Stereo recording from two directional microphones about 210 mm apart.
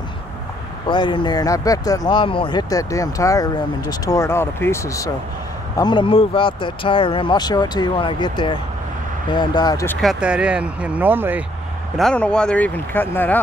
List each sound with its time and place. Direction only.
0.8 s speech: 20° left (ahead or behind)
10.0 s speech: 5° right (ahead or behind)
12.0 s speech: 5° left (ahead or behind)